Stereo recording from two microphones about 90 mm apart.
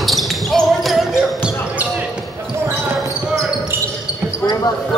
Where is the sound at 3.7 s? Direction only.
25° right (ahead or behind).